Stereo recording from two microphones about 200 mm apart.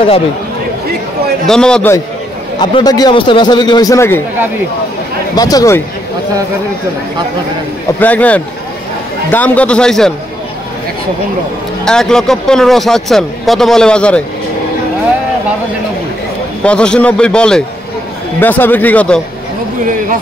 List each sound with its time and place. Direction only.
1.5 s a man's voice: 5° left (ahead or behind)
2.6 s a man's voice: 20° left (ahead or behind)
5.3 s a man's voice: 20° left (ahead or behind)
8.0 s a man's voice: 10° left (ahead or behind)
11.8 s a man's voice: 5° left (ahead or behind)
16.6 s a man's voice: 5° left (ahead or behind)